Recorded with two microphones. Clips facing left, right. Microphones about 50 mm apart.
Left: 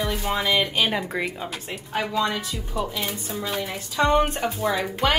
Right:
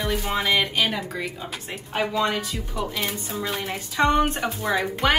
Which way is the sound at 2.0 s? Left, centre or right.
Centre.